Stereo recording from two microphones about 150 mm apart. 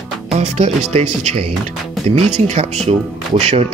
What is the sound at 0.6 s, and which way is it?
Speech, 45° right (ahead or behind).